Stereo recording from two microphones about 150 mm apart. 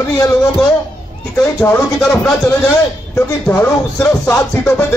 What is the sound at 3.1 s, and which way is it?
Music, 15° left (ahead or behind).